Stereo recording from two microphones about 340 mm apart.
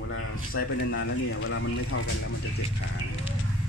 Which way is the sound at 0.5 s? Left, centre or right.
Left.